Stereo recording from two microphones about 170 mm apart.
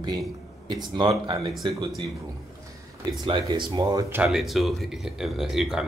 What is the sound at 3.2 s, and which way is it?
Speech, 30° right (ahead or behind).